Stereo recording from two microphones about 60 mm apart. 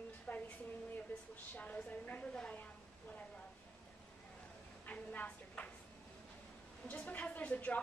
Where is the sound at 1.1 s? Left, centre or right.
Left.